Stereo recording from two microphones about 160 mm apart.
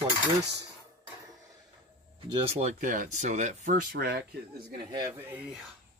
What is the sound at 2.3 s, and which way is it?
Speech, 35° right (ahead or behind).